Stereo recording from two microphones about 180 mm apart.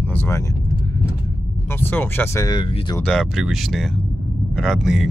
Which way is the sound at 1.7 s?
10° left (ahead or behind).